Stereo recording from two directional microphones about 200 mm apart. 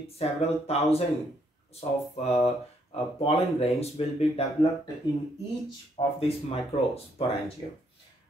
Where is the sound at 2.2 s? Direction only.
30° left (ahead or behind).